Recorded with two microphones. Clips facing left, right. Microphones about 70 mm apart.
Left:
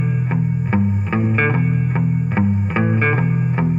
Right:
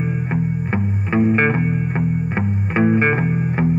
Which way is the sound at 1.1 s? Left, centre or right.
Centre.